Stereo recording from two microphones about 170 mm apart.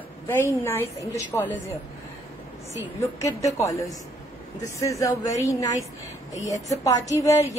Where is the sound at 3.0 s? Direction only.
20° left (ahead or behind).